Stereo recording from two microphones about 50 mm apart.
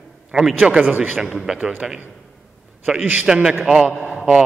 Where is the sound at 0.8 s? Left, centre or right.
Right.